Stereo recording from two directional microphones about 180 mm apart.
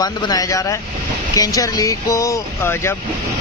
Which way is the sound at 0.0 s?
20° left (ahead or behind).